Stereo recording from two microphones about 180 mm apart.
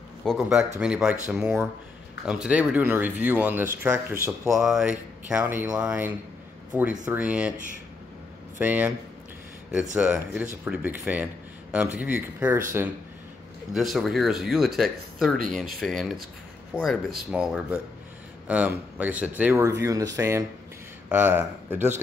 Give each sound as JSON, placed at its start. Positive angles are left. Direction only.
{"t": 0.2, "sound": "speech", "side_deg": 0}
{"t": 8.5, "sound": "speech", "side_deg": -10}
{"t": 13.7, "sound": "speech", "side_deg": 0}